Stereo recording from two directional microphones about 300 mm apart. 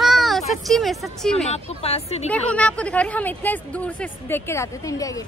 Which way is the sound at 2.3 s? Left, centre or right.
Centre.